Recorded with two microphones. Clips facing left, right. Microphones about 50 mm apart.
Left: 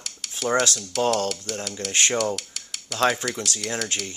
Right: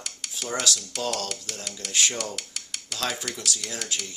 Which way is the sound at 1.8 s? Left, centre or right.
Left.